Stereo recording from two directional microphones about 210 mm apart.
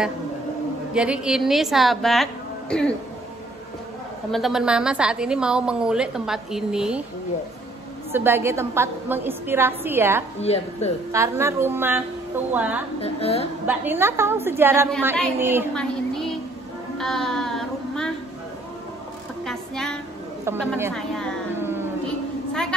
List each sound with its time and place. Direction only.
0.9 s a woman's voice: 5° right (ahead or behind)
4.3 s a woman's voice: centre (ahead or behind)
8.1 s a woman's voice: 10° right (ahead or behind)
10.4 s speech: 30° left (ahead or behind)
11.1 s a woman's voice: 15° right (ahead or behind)
13.0 s speech: 30° left (ahead or behind)
13.7 s a woman's voice: 10° right (ahead or behind)
15.7 s a sound: centre (ahead or behind)
17.0 s music: centre (ahead or behind)
19.4 s a sound: centre (ahead or behind)
20.4 s a woman's voice: 10° right (ahead or behind)
20.9 s a woman's voice: 5° left (ahead or behind)
21.5 s a sound: 10° right (ahead or behind)
22.0 s a sound: 5° left (ahead or behind)